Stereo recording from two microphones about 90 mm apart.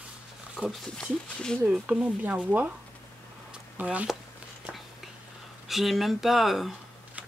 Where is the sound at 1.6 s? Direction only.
15° right (ahead or behind).